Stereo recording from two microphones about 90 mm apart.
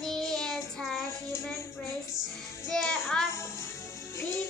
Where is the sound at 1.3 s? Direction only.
25° left (ahead or behind).